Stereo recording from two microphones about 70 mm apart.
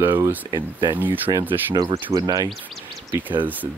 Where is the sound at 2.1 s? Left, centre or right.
Right.